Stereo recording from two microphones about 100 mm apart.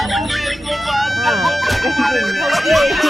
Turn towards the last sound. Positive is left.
turn(degrees=0)  # may be behind; listen again after turning